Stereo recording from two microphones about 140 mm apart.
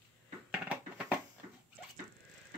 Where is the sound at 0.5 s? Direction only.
10° right (ahead or behind).